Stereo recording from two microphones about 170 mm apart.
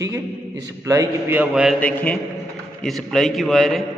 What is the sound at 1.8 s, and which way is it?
A man's voice, 10° left (ahead or behind).